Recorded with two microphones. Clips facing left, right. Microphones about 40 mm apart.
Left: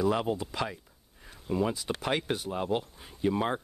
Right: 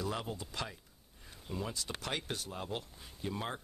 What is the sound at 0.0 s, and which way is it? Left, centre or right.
Speech, left.